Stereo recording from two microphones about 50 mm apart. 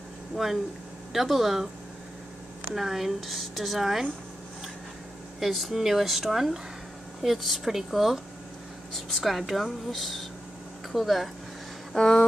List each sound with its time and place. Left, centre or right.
0.4 s speech: centre
2.7 s speech: centre
5.4 s speech: centre
11.9 s a sound: centre